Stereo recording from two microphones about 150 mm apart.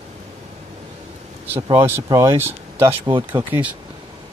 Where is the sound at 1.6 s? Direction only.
30° right (ahead or behind); by 3.7 s 10° right (ahead or behind).